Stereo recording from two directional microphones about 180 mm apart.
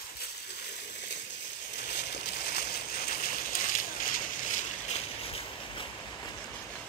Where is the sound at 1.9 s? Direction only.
65° left (ahead or behind); by 5.0 s 45° left (ahead or behind).